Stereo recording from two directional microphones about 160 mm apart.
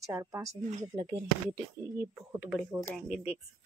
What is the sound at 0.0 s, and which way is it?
Speech, 20° right (ahead or behind).